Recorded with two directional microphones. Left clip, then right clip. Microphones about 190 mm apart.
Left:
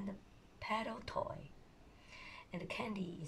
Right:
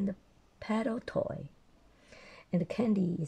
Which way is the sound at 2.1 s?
40° right (ahead or behind).